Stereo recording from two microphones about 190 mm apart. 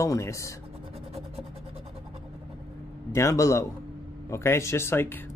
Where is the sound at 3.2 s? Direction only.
15° left (ahead or behind).